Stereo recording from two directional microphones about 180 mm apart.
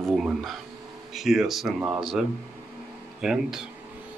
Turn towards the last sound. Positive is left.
turn(degrees=-5)  # may be behind; listen again after turning